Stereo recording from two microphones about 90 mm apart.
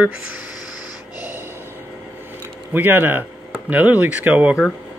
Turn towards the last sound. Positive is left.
turn(degrees=-15)  # may be behind; listen again after turning